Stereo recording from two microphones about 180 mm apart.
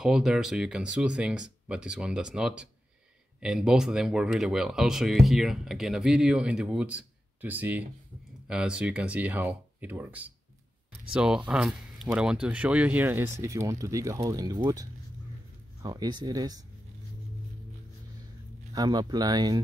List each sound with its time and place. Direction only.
0.0 s speech: 5° right (ahead or behind); by 16.6 s 20° right (ahead or behind)
18.7 s speech: 20° right (ahead or behind)